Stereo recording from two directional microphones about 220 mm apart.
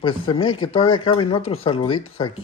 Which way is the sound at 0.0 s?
25° left (ahead or behind).